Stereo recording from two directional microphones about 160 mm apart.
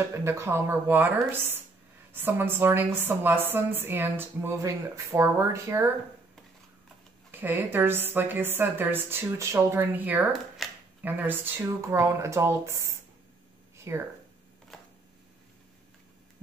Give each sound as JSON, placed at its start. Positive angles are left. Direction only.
{"t": 0.1, "sound": "a woman's voice", "side_deg": -15}
{"t": 7.2, "sound": "a woman's voice", "side_deg": -10}
{"t": 10.3, "sound": "shuffling cards", "side_deg": 0}
{"t": 11.1, "sound": "a woman's voice", "side_deg": -10}
{"t": 13.7, "sound": "a sound", "side_deg": -15}
{"t": 14.7, "sound": "a sound", "side_deg": 0}